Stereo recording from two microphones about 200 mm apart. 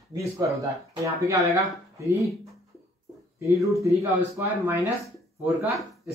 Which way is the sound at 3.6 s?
15° right (ahead or behind).